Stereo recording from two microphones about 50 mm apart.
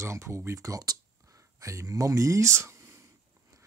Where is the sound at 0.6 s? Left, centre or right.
Right.